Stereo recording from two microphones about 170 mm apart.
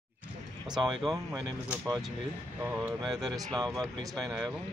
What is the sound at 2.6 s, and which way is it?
Speech, 10° right (ahead or behind).